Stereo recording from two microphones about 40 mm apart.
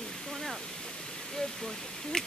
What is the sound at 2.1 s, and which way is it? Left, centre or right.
Speech, centre.